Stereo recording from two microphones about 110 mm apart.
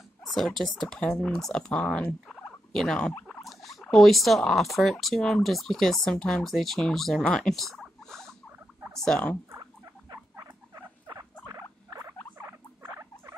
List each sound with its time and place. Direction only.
0.3 s speech: centre (ahead or behind)
10.1 s rodents: 35° right (ahead or behind)